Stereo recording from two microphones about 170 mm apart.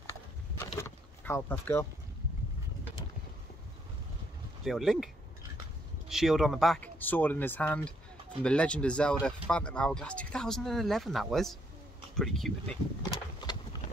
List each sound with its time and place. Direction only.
0.6 s vehicle: 15° left (ahead or behind)
4.6 s speech: centre (ahead or behind)
13.1 s a sound: 25° left (ahead or behind)